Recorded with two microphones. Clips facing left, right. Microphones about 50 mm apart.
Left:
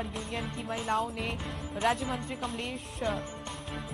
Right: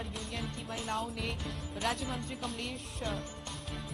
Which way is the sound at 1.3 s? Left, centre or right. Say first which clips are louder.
Left 4 dB; left.